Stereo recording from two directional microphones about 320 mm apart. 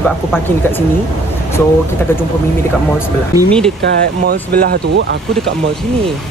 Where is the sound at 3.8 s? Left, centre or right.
Right.